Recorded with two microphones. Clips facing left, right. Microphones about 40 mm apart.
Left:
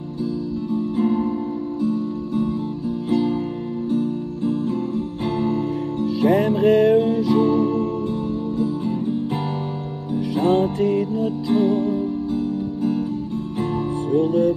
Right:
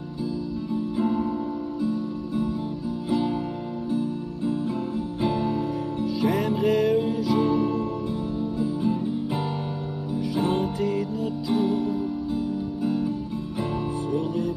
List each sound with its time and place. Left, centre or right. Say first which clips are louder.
5.4 s music: left 4 dB; left
6.0 s music: left 7 dB; left
7.3 s music: left 4 dB; centre
7.6 s music: left 5 dB; left
10.4 s music: left 8 dB; left
14.1 s music: left 10 dB; left